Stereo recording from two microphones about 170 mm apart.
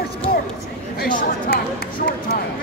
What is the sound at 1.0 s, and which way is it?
Speech, 60° left (ahead or behind).